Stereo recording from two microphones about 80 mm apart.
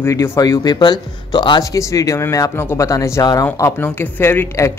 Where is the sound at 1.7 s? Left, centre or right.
Left.